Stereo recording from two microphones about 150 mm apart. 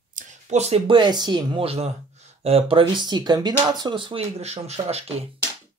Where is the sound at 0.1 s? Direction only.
50° right (ahead or behind).